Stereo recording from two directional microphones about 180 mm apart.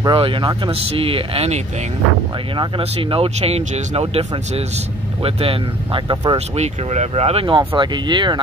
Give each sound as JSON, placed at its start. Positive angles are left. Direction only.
{"t": 0.0, "sound": "speech", "side_deg": -30}